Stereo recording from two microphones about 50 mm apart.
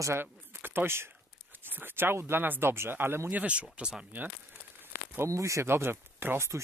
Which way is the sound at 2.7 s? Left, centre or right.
Right.